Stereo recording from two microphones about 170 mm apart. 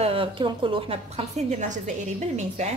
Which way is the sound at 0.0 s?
35° right (ahead or behind).